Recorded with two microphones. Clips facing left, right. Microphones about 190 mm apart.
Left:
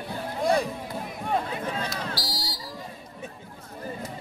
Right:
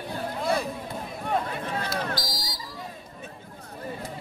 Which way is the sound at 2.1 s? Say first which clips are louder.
Even; 30° left (ahead or behind).